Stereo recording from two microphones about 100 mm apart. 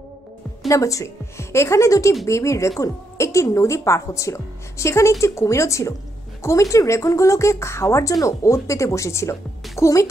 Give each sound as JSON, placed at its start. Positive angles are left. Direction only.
{"t": 0.7, "sound": "speech", "side_deg": 35}